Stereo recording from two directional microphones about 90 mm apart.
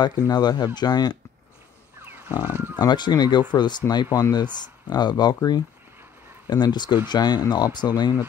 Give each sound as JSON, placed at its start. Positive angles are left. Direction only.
{"t": 0.3, "sound": "speech", "side_deg": 50}
{"t": 2.0, "sound": "music", "side_deg": -25}
{"t": 2.5, "sound": "speech", "side_deg": -25}
{"t": 2.8, "sound": "speech", "side_deg": 50}